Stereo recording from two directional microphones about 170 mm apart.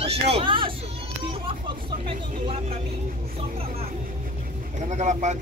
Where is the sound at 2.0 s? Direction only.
35° right (ahead or behind).